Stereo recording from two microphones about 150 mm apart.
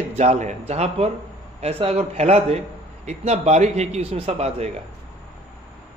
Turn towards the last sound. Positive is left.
turn(degrees=-45)  # may be behind; listen again after turning